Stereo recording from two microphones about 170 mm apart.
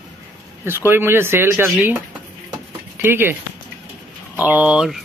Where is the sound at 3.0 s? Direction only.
15° right (ahead or behind).